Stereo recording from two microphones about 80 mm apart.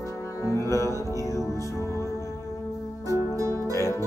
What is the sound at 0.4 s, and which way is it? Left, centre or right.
Music, left.